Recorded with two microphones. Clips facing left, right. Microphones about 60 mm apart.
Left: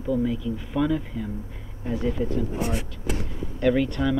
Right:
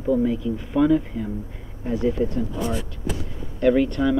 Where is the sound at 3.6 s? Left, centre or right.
Centre.